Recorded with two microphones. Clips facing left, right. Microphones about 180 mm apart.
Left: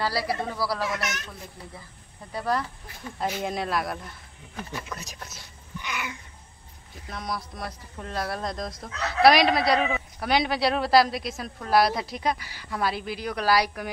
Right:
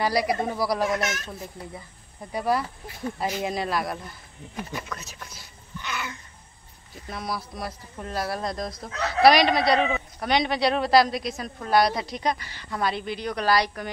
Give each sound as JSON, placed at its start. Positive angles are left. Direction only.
{"t": 0.0, "sound": "speech", "side_deg": -15}
{"t": 2.3, "sound": "a man's voice", "side_deg": -10}
{"t": 4.8, "sound": "speech", "side_deg": 10}
{"t": 5.8, "sound": "a sound", "side_deg": 15}
{"t": 7.1, "sound": "a man's voice", "side_deg": -5}